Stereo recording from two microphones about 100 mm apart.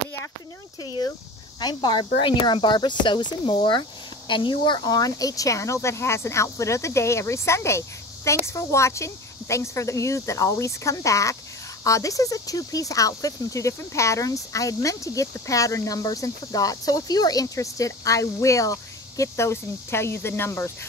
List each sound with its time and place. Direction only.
1.6 s speech: 45° left (ahead or behind); by 20.7 s 25° left (ahead or behind)